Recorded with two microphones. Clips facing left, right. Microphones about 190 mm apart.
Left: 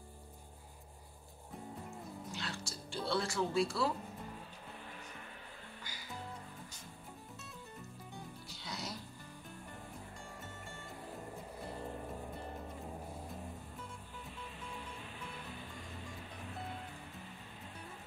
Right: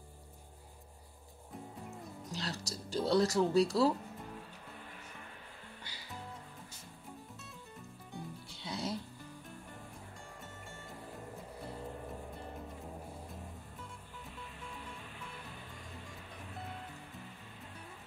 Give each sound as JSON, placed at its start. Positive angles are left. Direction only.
{"t": 2.3, "sound": "music", "side_deg": -40}
{"t": 8.5, "sound": "music", "side_deg": -25}